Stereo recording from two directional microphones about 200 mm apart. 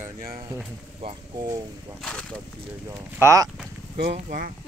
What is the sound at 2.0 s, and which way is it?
Speech, 5° left (ahead or behind).